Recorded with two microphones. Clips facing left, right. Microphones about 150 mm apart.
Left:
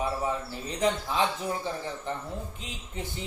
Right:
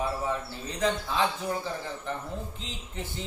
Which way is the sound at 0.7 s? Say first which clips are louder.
Left 1 dB; 20° left (ahead or behind).